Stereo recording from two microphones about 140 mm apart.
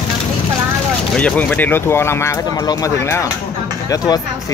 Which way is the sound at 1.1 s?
10° left (ahead or behind).